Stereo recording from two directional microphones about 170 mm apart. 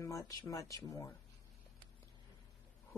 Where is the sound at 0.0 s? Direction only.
20° left (ahead or behind).